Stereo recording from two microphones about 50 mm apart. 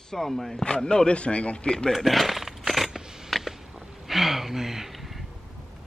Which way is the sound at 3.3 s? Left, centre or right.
Centre.